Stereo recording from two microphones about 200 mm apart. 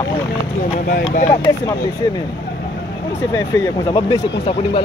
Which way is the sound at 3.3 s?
15° left (ahead or behind).